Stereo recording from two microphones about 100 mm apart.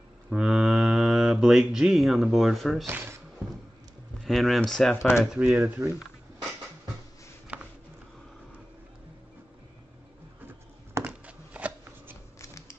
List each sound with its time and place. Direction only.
0.3 s speech: 5° right (ahead or behind)
4.2 s speech: centre (ahead or behind)
4.9 s speech: 25° left (ahead or behind)
5.2 s speech: centre (ahead or behind)
11.1 s shuffling cards: 15° right (ahead or behind)
12.4 s typewriter: 30° left (ahead or behind)